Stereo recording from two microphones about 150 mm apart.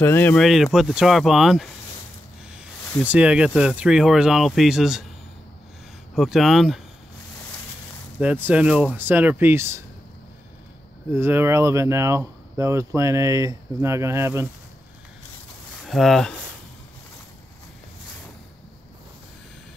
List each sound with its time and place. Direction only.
0.0 s speech: 15° left (ahead or behind)
0.4 s speech: centre (ahead or behind)
3.0 s speech: 10° right (ahead or behind)
6.1 s speech: centre (ahead or behind)
8.2 s speech: 10° right (ahead or behind)
11.1 s speech: 15° right (ahead or behind)
15.8 s speech: centre (ahead or behind)